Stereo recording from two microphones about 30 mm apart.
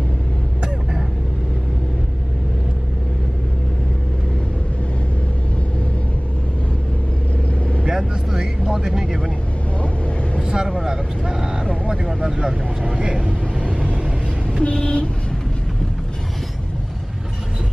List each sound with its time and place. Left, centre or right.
7.8 s vehicle: centre
9.8 s vehicle: left
10.4 s vehicle: right
12.8 s vehicle: right
14.6 s vehicle: left